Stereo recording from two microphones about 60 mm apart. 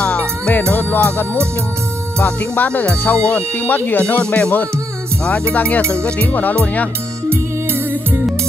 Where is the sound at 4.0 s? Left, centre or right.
Left.